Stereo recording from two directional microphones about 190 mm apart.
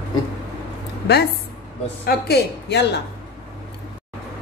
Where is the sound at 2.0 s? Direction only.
55° left (ahead or behind).